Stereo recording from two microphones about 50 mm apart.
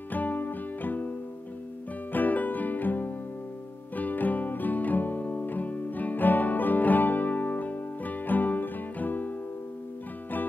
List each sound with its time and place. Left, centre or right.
0.1 s music: left
2.1 s music: left